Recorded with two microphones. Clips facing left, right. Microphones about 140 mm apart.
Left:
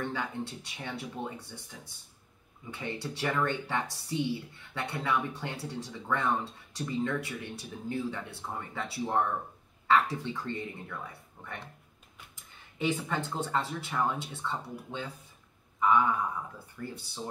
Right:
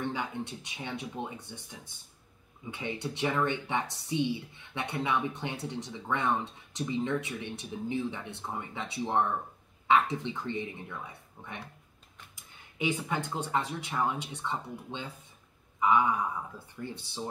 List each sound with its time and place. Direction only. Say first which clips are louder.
0.0 s speech: even; 20° right (ahead or behind)
13.1 s speech: even; 15° right (ahead or behind)
16.7 s speech: right 1 dB; 25° right (ahead or behind)